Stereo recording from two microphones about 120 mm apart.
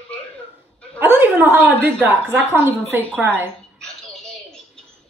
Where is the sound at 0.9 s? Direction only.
15° right (ahead or behind).